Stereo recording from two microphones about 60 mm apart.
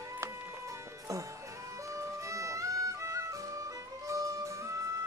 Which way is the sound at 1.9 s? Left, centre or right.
Right.